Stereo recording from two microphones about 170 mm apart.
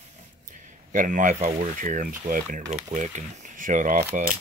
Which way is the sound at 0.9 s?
50° right (ahead or behind).